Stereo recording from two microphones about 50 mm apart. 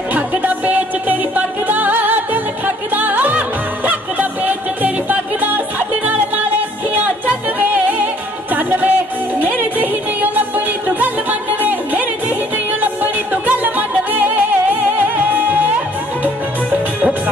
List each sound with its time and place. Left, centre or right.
0.1 s music: right